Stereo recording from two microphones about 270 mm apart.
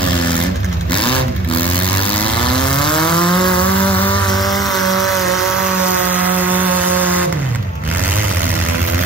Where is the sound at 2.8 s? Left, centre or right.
Centre.